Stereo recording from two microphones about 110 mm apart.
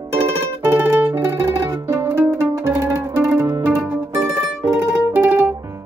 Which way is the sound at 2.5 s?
30° right (ahead or behind).